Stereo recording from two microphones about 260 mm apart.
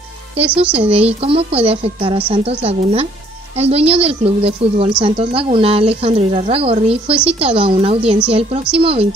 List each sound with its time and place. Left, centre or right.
0.7 s a woman's voice: right